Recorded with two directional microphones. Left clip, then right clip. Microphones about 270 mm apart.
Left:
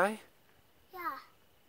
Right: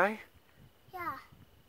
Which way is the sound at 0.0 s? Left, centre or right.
Centre.